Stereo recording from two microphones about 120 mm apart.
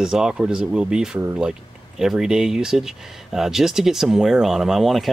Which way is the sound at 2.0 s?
5° right (ahead or behind).